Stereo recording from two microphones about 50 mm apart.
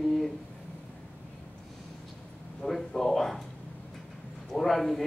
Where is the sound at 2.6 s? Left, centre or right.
Centre.